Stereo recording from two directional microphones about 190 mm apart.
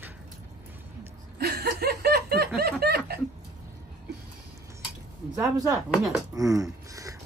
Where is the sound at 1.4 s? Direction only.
55° right (ahead or behind).